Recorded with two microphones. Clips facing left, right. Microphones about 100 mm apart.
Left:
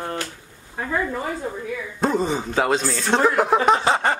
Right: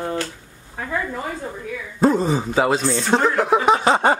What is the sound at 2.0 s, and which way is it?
Speech, centre (ahead or behind).